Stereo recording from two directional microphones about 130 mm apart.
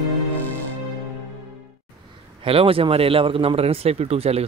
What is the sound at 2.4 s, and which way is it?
Speech, 45° right (ahead or behind).